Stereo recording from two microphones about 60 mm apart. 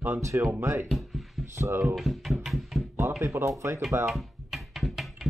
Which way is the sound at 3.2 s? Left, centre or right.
Right.